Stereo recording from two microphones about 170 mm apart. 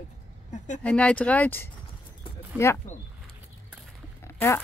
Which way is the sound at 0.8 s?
5° left (ahead or behind).